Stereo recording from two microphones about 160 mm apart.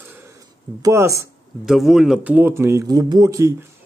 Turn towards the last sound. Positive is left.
turn(degrees=-20)  # may be behind; listen again after turning